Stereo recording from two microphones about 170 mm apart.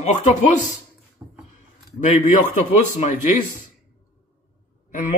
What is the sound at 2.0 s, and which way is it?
A man's voice, 45° left (ahead or behind).